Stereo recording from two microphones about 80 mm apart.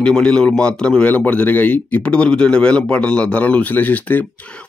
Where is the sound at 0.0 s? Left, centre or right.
Centre.